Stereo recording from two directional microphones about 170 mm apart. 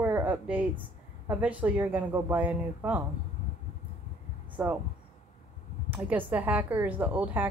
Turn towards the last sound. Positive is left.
turn(degrees=-10)  # may be behind; listen again after turning